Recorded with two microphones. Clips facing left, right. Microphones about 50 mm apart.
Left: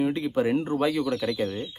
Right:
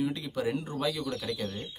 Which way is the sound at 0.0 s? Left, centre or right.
Left.